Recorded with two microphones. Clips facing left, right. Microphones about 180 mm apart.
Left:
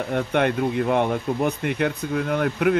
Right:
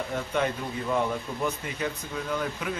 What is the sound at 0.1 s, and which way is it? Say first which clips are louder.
Speech: left 8 dB; 65° left (ahead or behind).